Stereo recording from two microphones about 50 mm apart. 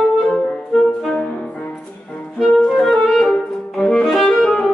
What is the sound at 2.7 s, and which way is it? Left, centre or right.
Clarinet, centre.